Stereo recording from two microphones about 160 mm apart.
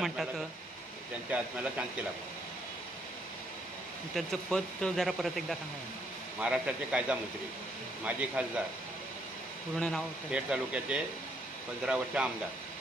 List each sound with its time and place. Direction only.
1.3 s a man's voice: 10° right (ahead or behind)
4.1 s a man's voice: 5° left (ahead or behind)
9.8 s speech: 5° left (ahead or behind)
10.3 s a man's voice: 5° right (ahead or behind)